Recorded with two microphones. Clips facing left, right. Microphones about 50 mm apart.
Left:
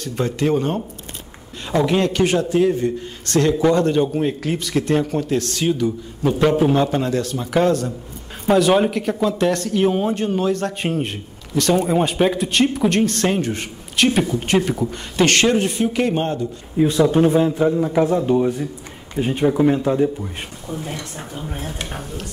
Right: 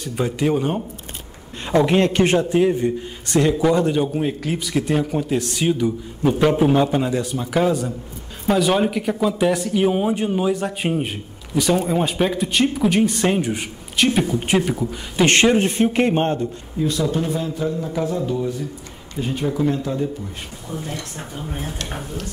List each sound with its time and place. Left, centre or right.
0.0 s a man's voice: centre
1.8 s a man's voice: right
7.3 s a man's voice: centre
15.2 s a man's voice: right
16.7 s a man's voice: left
21.2 s speech: centre